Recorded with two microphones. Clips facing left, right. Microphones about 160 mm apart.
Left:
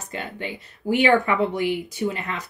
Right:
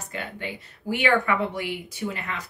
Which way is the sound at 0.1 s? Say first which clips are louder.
Left 3 dB; 25° left (ahead or behind).